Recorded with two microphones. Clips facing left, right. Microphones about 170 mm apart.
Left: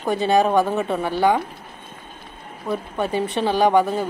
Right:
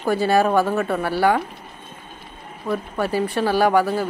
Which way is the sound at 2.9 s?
20° left (ahead or behind).